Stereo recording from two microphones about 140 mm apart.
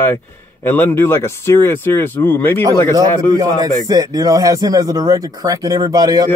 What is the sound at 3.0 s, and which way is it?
A man's voice, 25° right (ahead or behind).